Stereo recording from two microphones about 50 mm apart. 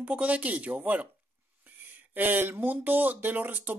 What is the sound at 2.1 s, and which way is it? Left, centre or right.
Speech, right.